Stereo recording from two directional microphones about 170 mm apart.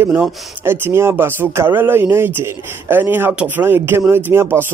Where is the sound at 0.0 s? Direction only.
15° right (ahead or behind).